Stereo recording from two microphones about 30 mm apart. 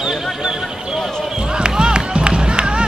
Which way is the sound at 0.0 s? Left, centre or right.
Centre.